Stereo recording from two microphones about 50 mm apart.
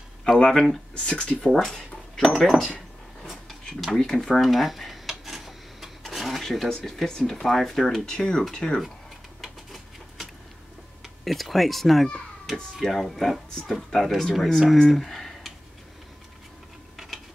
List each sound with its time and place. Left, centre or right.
0.4 s speech: centre
1.6 s a sound: centre
2.3 s speech: centre
3.3 s drawer open or close: centre
3.9 s speech: centre
4.4 s rub: centre
6.4 s speech: centre
8.0 s speech: centre
9.4 s a sound: centre
11.2 s speech: centre
14.7 s a sound: centre
16.9 s a sound: centre